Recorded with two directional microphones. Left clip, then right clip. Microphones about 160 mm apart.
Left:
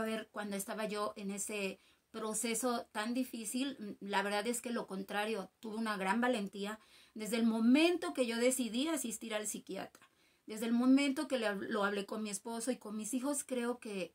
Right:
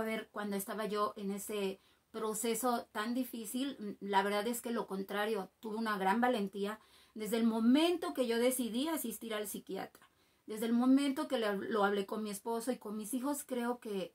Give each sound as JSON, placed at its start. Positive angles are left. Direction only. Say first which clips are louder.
{"t": 0.0, "sound": "speech", "louder": "right 1 dB", "side_deg": 15}